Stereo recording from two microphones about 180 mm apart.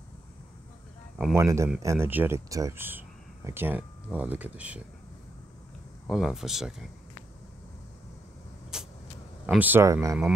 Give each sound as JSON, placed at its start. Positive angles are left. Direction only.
{"t": 1.3, "sound": "speech", "side_deg": -15}
{"t": 6.0, "sound": "speech", "side_deg": 0}
{"t": 8.7, "sound": "vehicle", "side_deg": -5}
{"t": 9.5, "sound": "speech", "side_deg": -10}